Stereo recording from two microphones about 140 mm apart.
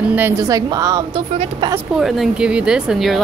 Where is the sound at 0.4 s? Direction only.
25° right (ahead or behind).